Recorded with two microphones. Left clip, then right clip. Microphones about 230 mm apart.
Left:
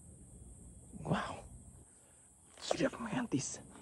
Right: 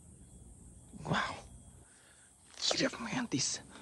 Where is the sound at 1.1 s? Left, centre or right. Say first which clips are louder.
Right 4 dB; centre.